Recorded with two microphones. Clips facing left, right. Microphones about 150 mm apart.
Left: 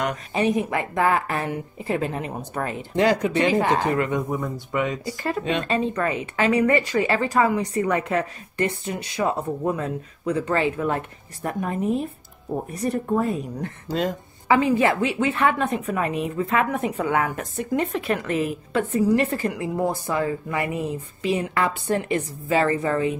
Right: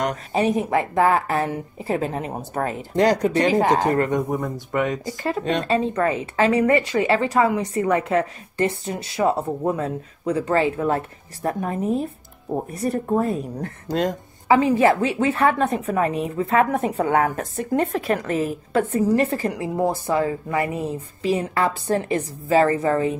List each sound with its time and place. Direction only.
0.0 s a woman's voice: 35° right (ahead or behind)
14.5 s a woman's voice: 35° right (ahead or behind)